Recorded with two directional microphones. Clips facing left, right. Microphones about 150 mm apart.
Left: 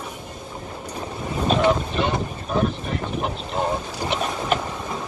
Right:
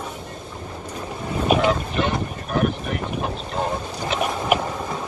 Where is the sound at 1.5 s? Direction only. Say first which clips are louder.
Right 2 dB; 10° right (ahead or behind).